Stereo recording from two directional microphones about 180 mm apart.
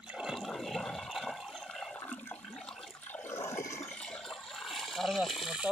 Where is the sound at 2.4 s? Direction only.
5° left (ahead or behind).